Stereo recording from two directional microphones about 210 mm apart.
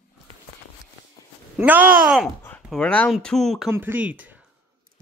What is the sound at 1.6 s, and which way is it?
Speech, 10° right (ahead or behind).